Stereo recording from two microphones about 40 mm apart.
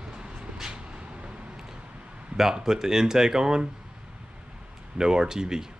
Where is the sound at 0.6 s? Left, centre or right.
Right.